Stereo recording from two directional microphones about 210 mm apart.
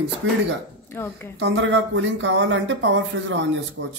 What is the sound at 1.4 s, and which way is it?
Speech, 55° right (ahead or behind).